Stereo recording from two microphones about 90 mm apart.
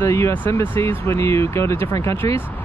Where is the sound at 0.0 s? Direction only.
30° left (ahead or behind).